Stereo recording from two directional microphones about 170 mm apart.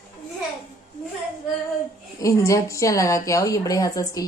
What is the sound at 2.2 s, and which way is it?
A woman's voice, 20° left (ahead or behind).